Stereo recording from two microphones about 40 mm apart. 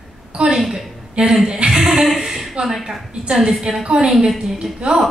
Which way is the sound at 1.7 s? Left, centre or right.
Centre.